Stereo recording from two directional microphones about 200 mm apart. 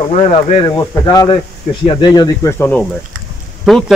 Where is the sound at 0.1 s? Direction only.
25° left (ahead or behind).